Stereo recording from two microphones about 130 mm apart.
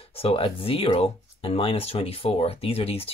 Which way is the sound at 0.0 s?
45° left (ahead or behind).